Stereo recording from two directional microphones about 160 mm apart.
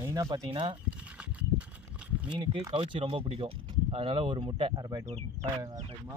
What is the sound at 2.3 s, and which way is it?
Speech, 30° right (ahead or behind).